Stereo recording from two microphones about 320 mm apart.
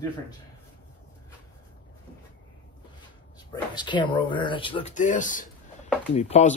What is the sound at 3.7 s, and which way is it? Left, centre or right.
Speech, centre.